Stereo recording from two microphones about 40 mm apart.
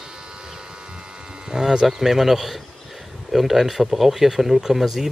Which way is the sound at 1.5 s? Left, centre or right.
Centre.